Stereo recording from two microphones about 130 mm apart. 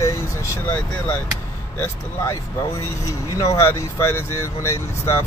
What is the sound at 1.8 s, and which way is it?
Speech, 20° left (ahead or behind).